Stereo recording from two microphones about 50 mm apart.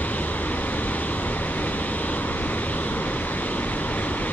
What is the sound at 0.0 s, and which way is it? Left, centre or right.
Vehicle, left.